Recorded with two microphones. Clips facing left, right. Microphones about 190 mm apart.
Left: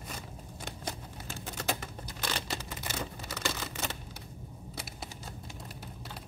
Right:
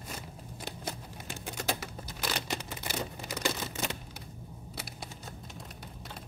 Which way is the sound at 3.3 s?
15° right (ahead or behind).